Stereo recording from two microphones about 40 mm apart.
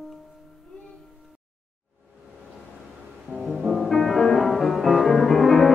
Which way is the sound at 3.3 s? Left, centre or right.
Right.